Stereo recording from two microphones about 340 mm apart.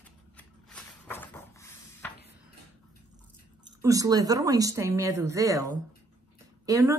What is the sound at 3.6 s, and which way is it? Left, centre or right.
A woman's voice, centre.